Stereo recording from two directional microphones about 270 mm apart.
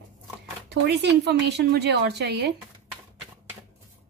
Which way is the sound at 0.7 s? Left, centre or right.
Right.